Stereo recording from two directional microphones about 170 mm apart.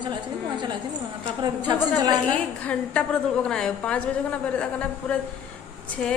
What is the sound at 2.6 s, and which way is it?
A woman's voice, 5° left (ahead or behind).